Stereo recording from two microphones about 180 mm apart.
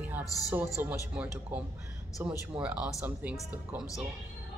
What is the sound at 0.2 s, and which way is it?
Speech, 20° left (ahead or behind).